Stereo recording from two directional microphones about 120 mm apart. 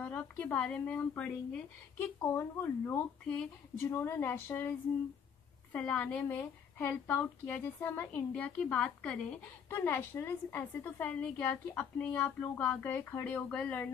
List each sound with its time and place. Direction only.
0.0 s a woman's voice: 10° left (ahead or behind)
2.0 s a woman's voice: 20° left (ahead or behind)